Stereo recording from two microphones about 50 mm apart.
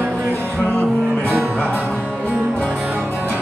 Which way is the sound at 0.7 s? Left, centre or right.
Left.